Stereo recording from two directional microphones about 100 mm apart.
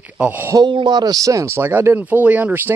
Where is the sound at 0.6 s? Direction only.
50° right (ahead or behind).